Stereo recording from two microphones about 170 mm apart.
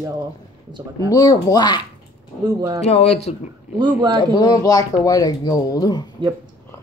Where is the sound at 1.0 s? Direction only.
20° left (ahead or behind).